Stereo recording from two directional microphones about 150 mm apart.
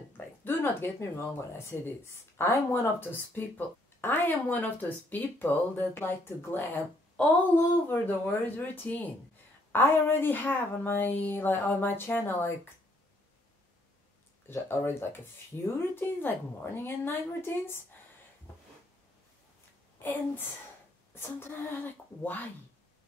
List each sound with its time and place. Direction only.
0.4 s speech: 15° left (ahead or behind)
14.5 s speech: 15° left (ahead or behind)
20.0 s speech: 15° left (ahead or behind)